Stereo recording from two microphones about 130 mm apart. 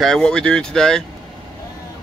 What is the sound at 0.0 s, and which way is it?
Speech, 5° left (ahead or behind).